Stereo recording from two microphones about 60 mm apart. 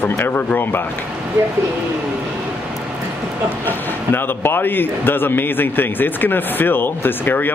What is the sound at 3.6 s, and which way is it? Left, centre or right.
Speech, left.